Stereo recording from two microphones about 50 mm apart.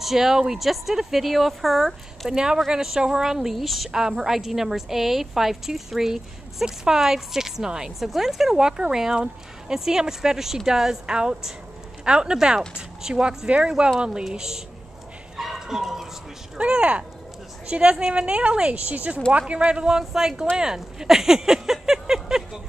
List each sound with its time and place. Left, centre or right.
0.0 s a woman's voice: centre
15.3 s bow-wow: centre
16.5 s a woman's voice: right